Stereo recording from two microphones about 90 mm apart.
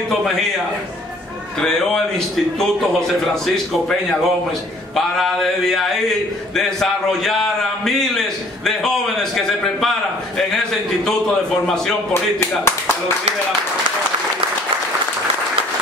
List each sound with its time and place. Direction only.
1.6 s a man's voice: 5° left (ahead or behind)
4.9 s a man's voice: 5° left (ahead or behind)
8.6 s a man's voice: 5° left (ahead or behind)
12.1 s speech: 25° left (ahead or behind)